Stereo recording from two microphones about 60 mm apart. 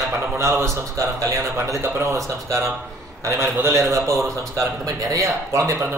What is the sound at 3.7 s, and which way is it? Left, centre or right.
Speech, right.